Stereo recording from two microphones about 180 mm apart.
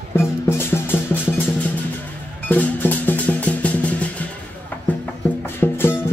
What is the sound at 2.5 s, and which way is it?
Music, 10° left (ahead or behind).